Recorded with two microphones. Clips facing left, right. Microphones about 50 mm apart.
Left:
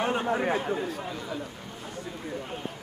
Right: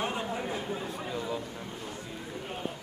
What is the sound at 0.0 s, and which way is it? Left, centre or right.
Speech, left.